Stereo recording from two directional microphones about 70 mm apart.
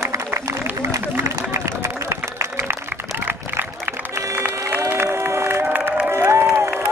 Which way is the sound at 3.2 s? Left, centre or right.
Right.